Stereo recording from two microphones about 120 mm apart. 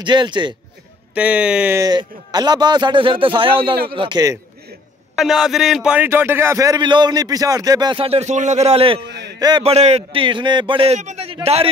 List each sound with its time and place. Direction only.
0.0 s speech: 40° right (ahead or behind)
1.1 s speech: 10° right (ahead or behind)
1.8 s speech: 35° right (ahead or behind)
5.1 s speech: 5° right (ahead or behind)
6.0 s speech: 20° right (ahead or behind)
6.8 s speech: 40° right (ahead or behind)
8.0 s a man's voice: 60° right (ahead or behind)
11.0 s a man's voice: 80° right
11.4 s a man's voice: 55° right (ahead or behind)